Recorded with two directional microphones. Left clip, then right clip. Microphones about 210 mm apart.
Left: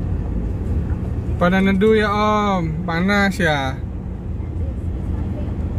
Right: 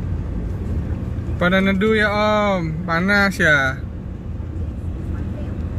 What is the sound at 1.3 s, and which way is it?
Speech, centre (ahead or behind).